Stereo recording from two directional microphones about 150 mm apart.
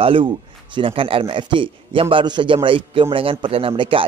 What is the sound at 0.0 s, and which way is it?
A man's voice, 35° right (ahead or behind).